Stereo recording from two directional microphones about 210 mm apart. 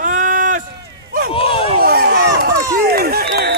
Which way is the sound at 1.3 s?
25° left (ahead or behind).